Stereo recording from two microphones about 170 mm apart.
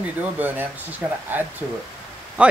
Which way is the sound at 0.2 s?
10° right (ahead or behind).